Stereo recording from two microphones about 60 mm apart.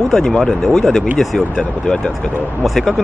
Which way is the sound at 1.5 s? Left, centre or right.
Centre.